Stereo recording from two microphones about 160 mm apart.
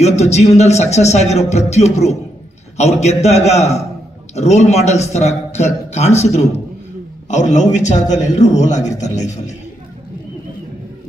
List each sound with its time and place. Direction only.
0.0 s a man's voice: 45° left (ahead or behind)